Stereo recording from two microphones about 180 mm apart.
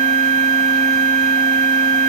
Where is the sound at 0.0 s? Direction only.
40° right (ahead or behind).